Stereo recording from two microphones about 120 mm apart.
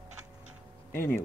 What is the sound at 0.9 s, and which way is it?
Speech, 20° left (ahead or behind).